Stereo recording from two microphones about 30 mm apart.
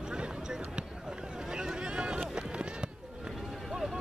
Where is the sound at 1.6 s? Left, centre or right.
Right.